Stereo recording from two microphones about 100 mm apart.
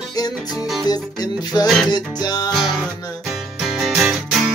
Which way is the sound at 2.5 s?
5° left (ahead or behind).